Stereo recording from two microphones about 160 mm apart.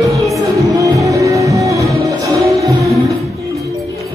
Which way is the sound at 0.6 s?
20° right (ahead or behind).